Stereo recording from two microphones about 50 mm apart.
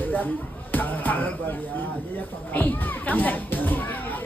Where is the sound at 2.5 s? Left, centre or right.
Left.